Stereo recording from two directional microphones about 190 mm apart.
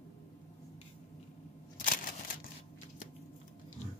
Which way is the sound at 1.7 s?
45° left (ahead or behind).